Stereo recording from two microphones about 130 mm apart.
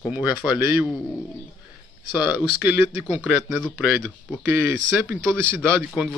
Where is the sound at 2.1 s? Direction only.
35° left (ahead or behind).